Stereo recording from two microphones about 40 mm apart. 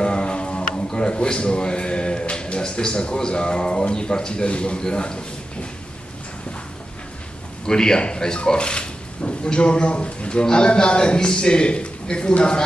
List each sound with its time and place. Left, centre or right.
0.0 s a man's voice: left
7.6 s a man's voice: centre